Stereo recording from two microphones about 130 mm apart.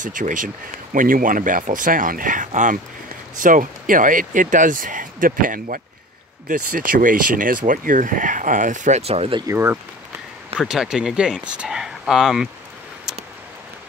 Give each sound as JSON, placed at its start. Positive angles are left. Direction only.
{"t": 0.0, "sound": "speech", "side_deg": -85}
{"t": 9.5, "sound": "speech", "side_deg": -20}
{"t": 10.6, "sound": "speech", "side_deg": -5}